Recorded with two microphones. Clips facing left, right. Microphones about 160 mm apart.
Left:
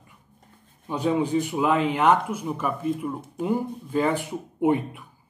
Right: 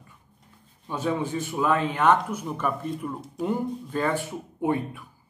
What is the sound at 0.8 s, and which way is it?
Speech, 15° left (ahead or behind).